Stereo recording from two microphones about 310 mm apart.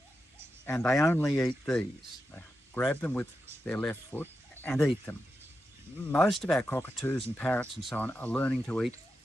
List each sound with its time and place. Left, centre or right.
0.7 s speech: centre